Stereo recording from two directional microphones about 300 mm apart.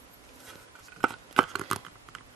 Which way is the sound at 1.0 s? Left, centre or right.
Centre.